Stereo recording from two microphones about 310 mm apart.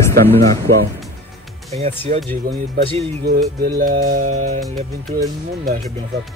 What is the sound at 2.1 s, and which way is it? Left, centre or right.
Music, right.